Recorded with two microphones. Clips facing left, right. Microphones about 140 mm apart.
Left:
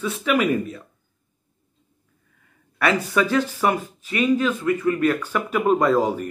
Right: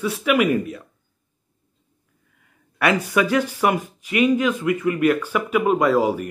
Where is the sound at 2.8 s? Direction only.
15° right (ahead or behind).